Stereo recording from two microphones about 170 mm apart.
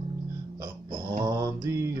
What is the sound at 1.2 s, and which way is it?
Mantra, 20° right (ahead or behind).